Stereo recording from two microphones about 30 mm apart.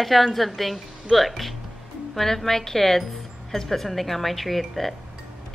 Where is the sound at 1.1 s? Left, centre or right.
Centre.